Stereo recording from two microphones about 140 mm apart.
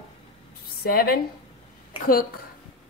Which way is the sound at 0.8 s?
90° left.